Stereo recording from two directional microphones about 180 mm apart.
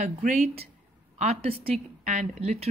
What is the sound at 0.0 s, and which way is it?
A woman's voice, 45° right (ahead or behind).